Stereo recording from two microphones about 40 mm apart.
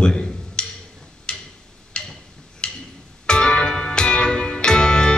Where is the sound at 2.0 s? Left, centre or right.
Left.